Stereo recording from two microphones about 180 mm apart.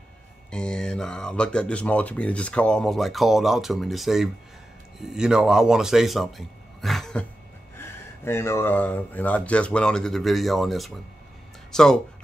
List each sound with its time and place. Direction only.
0.5 s speech: 5° left (ahead or behind)
7.7 s speech: 15° left (ahead or behind)